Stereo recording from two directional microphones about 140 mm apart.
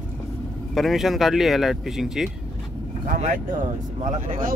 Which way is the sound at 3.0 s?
60° right (ahead or behind).